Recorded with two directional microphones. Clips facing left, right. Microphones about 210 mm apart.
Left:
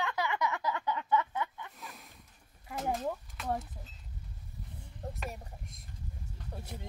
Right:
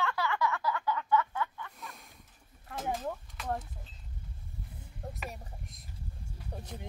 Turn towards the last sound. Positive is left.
turn(degrees=0)  # may be behind; listen again after turning